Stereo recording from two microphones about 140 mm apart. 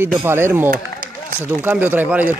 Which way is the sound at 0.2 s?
15° right (ahead or behind).